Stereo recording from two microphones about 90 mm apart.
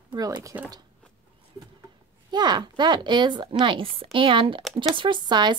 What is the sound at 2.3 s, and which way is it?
Speech, 55° right (ahead or behind).